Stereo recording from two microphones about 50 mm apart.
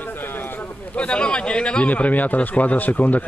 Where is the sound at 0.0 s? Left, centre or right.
Left.